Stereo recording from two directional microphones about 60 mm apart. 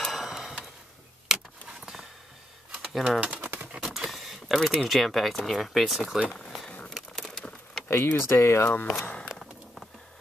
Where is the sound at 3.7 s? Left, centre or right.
Centre.